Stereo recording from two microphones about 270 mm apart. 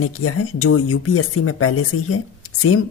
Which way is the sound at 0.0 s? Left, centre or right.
Left.